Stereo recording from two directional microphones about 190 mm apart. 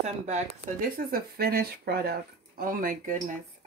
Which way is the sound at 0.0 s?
40° right (ahead or behind).